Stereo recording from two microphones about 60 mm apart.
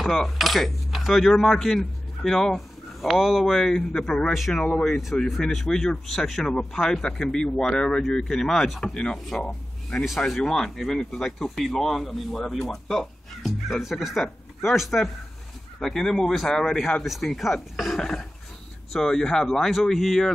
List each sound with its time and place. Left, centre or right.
0.0 s coin: centre
1.3 s speech: centre
4.3 s speech: centre
4.6 s speech: centre
4.8 s speech: centre